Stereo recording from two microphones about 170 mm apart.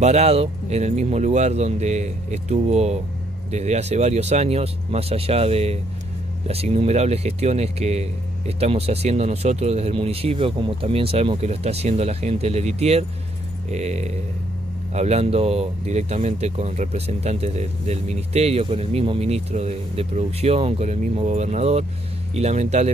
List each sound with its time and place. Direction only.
0.0 s speech: 40° right (ahead or behind)